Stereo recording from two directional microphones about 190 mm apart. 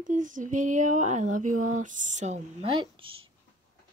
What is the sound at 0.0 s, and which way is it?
Speech, 40° right (ahead or behind).